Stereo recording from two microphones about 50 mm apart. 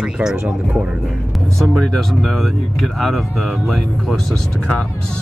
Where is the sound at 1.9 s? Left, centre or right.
Centre.